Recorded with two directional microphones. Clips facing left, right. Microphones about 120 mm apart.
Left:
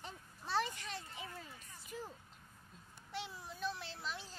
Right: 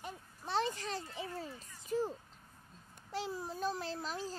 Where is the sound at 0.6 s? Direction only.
35° right (ahead or behind).